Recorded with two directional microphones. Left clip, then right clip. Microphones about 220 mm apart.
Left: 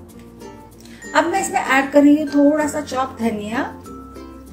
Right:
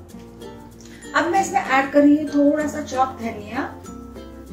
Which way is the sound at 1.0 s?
40° left (ahead or behind).